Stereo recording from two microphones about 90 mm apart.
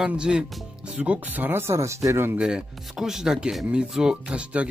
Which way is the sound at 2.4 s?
10° right (ahead or behind).